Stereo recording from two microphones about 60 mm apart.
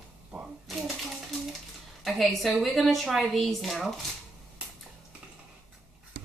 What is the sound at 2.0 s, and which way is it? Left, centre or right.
Speech, centre.